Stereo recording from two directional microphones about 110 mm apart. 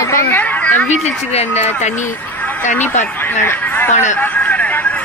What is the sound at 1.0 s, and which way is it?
Speech, 80° left.